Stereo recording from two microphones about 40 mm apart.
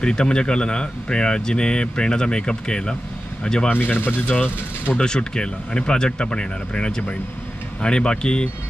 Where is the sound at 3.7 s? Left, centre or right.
Left.